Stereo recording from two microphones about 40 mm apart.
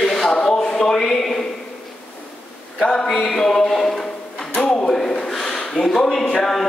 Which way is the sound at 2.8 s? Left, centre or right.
Centre.